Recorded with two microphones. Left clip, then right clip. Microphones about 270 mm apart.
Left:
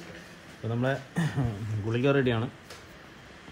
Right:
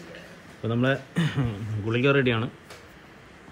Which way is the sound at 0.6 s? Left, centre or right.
Centre.